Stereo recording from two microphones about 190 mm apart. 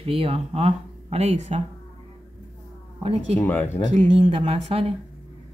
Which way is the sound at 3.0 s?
30° right (ahead or behind).